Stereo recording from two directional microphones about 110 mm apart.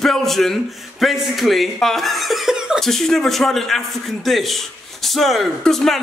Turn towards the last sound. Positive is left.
turn(degrees=5)  # may be behind; listen again after turning